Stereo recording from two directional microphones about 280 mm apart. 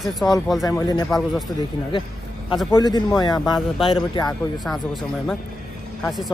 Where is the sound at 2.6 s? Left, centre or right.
Centre.